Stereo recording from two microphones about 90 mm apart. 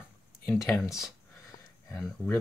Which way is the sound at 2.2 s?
20° left (ahead or behind).